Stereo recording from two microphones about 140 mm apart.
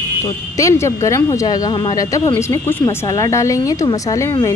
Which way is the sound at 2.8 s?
30° left (ahead or behind).